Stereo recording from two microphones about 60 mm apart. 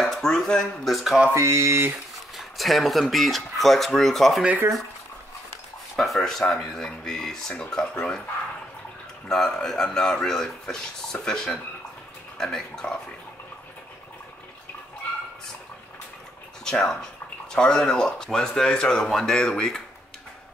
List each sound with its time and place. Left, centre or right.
0.0 s speech: centre
1.3 s speech: right
2.3 s speech: centre
5.9 s speech: centre
9.3 s speech: centre
16.6 s speech: centre